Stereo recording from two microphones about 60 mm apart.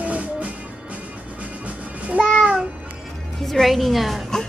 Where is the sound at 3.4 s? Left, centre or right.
Centre.